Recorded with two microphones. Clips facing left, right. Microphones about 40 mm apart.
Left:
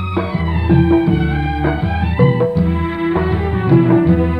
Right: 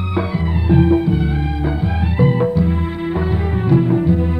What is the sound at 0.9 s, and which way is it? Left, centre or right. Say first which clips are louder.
Music: left 3 dB; left.